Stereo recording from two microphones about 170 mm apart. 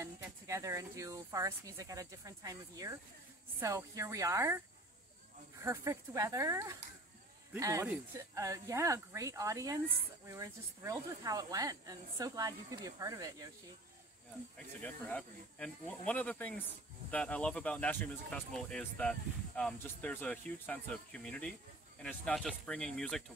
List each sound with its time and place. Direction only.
0.0 s speech: 20° right (ahead or behind)
5.6 s speech: 20° right (ahead or behind)
14.8 s speech: 10° left (ahead or behind)